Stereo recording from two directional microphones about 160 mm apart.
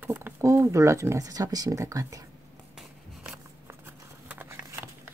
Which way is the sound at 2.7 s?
5° right (ahead or behind).